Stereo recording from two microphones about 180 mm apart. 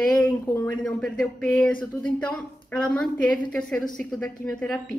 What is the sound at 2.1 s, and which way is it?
A woman's voice, 5° left (ahead or behind).